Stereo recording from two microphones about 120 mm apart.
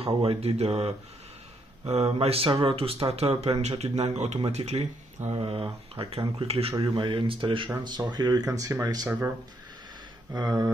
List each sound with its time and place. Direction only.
0.0 s speech: 55° right (ahead or behind)
5.3 s speech: 45° right (ahead or behind); by 9.1 s 30° right (ahead or behind)
10.3 s speech: 30° right (ahead or behind)